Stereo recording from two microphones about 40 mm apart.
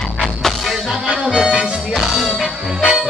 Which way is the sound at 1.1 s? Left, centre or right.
Centre.